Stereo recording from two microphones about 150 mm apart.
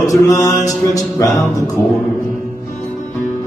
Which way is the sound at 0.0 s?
20° left (ahead or behind).